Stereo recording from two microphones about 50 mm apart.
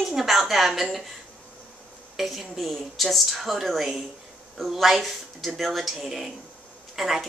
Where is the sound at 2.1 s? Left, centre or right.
Centre.